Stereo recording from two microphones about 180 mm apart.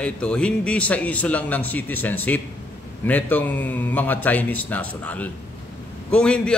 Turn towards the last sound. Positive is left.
turn(degrees=5)  # may be behind; listen again after turning